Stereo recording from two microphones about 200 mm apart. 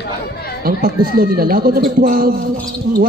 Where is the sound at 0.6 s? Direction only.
50° right (ahead or behind).